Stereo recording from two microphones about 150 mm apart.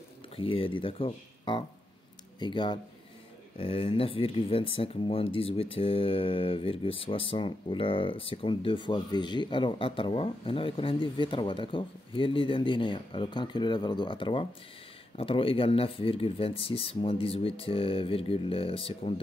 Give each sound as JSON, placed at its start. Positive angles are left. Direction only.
{"t": 0.4, "sound": "speech", "side_deg": 35}